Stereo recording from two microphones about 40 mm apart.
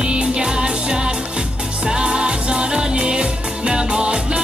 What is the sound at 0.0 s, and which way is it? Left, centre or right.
Music, right.